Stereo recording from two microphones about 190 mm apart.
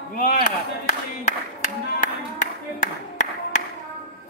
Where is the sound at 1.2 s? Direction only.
40° left (ahead or behind).